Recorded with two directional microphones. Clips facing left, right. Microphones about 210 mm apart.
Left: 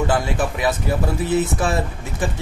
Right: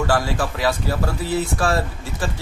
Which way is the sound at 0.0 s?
20° left (ahead or behind).